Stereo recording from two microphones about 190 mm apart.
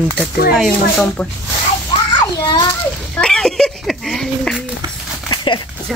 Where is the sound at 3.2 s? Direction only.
5° left (ahead or behind).